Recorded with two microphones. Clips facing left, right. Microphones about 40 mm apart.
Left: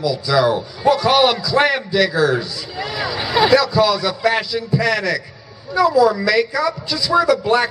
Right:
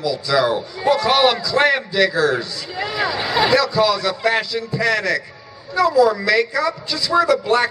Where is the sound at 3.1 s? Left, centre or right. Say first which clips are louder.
Left 4 dB; centre.